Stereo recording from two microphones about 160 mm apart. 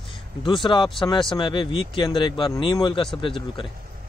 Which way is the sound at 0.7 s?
30° left (ahead or behind).